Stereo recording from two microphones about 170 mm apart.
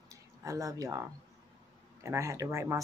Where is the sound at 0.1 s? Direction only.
20° right (ahead or behind).